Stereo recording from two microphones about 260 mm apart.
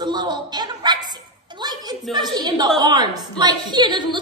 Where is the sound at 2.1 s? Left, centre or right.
Centre.